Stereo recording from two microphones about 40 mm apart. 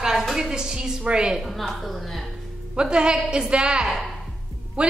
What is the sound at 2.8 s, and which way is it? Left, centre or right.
A woman's voice, right.